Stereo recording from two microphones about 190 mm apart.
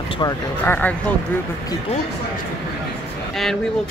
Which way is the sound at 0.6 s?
10° left (ahead or behind).